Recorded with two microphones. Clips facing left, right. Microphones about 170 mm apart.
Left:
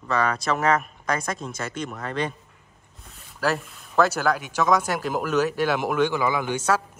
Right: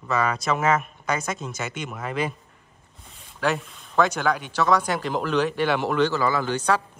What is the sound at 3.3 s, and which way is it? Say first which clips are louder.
A man's voice: even; 5° left (ahead or behind).